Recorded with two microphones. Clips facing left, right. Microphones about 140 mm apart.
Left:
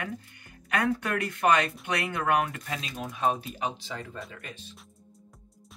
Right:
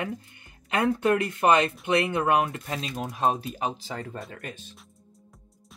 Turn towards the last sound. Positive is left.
turn(degrees=-45)  # may be behind; listen again after turning